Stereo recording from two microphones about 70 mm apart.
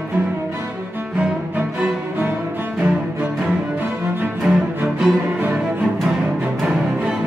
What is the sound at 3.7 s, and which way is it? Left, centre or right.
Music, right.